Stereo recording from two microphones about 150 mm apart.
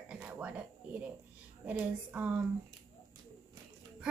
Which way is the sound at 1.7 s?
10° right (ahead or behind).